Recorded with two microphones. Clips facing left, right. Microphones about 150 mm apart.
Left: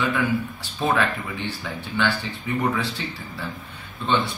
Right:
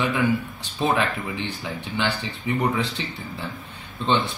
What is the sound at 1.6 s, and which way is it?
Speech, 15° right (ahead or behind).